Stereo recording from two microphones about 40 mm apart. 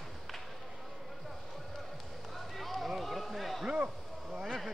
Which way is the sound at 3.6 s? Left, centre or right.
Right.